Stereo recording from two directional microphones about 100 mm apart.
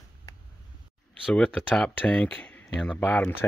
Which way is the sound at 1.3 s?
10° left (ahead or behind).